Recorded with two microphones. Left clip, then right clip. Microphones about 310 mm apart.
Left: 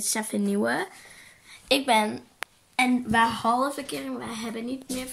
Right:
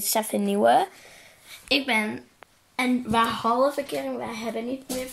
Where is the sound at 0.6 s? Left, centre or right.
Centre.